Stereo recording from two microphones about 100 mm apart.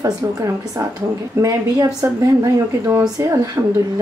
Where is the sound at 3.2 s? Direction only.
30° right (ahead or behind).